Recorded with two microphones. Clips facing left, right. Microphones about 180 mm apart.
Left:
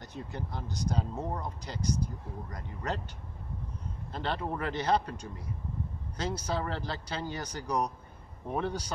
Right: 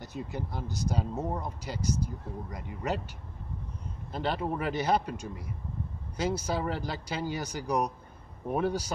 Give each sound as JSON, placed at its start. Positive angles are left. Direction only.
{"t": 0.0, "sound": "speech", "side_deg": -10}
{"t": 4.1, "sound": "speech", "side_deg": -10}